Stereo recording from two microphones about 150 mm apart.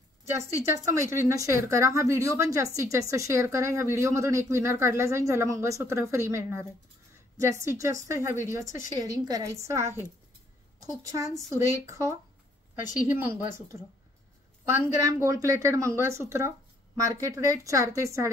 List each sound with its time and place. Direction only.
0.7 s a woman's voice: 20° right (ahead or behind)
11.0 s a woman's voice: 20° right (ahead or behind)